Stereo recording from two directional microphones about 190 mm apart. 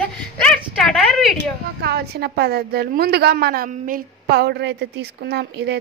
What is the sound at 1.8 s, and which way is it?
A woman's voice, 55° right (ahead or behind).